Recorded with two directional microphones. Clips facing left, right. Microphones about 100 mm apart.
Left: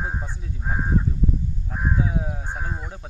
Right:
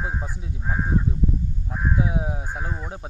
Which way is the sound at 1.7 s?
15° right (ahead or behind).